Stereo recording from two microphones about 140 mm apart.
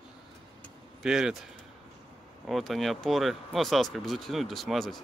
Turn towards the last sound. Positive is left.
turn(degrees=0)  # may be behind; listen again after turning